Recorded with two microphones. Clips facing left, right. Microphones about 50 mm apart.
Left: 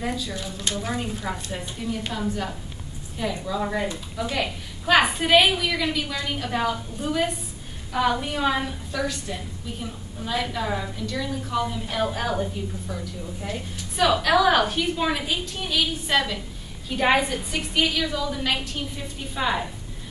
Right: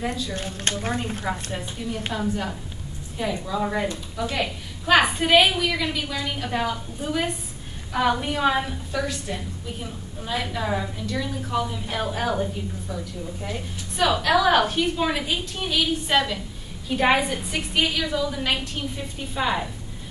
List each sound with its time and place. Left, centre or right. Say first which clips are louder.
0.3 s speech: right 2 dB; right
1.2 s a woman's voice: right 2 dB; centre
1.8 s a woman's voice: left 3 dB; centre
2.1 s a woman's voice: right 1 dB; centre